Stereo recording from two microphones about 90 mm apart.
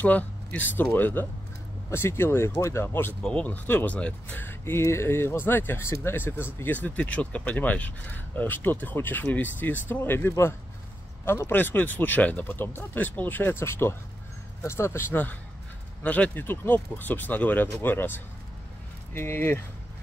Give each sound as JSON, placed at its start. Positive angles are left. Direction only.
{"t": 0.0, "sound": "speech", "side_deg": 15}
{"t": 3.2, "sound": "speech", "side_deg": 10}